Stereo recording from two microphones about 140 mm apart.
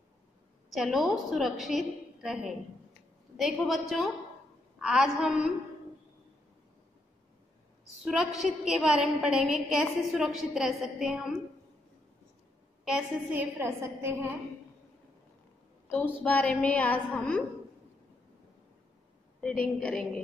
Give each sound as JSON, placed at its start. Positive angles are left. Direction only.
{"t": 0.7, "sound": "a woman's voice", "side_deg": 0}
{"t": 8.0, "sound": "a woman's voice", "side_deg": 0}
{"t": 12.8, "sound": "a woman's voice", "side_deg": -10}
{"t": 15.9, "sound": "a woman's voice", "side_deg": 10}
{"t": 19.4, "sound": "a woman's voice", "side_deg": 10}